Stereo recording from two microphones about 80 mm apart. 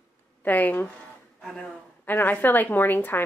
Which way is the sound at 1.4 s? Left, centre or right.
Centre.